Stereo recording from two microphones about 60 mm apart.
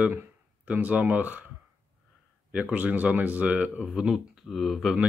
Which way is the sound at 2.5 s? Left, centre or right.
Right.